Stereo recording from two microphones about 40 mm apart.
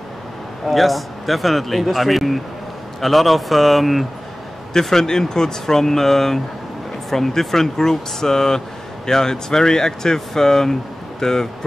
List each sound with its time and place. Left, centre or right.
0.7 s speech: centre
4.8 s speech: centre